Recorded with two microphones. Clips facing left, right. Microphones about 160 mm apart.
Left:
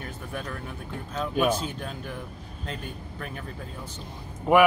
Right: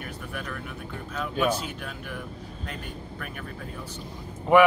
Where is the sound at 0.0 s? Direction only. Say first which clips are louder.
Left 1 dB; 30° left (ahead or behind).